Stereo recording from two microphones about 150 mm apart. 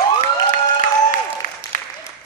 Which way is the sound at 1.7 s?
60° left (ahead or behind).